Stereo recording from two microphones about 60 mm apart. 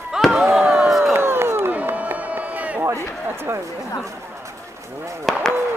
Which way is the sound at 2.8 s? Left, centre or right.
Right.